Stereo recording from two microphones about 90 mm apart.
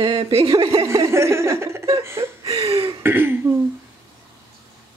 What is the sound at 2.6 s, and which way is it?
Speech, 90° right.